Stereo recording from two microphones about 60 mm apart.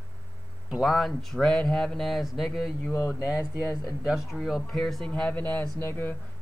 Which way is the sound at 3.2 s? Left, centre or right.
Left.